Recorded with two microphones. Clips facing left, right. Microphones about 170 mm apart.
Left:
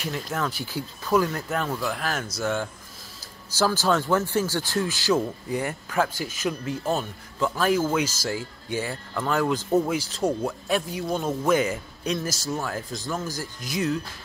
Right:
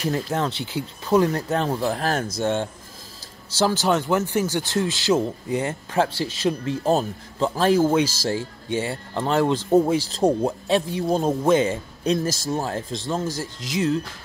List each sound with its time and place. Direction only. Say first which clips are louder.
0.0 s speech: right 5 dB; 35° right (ahead or behind)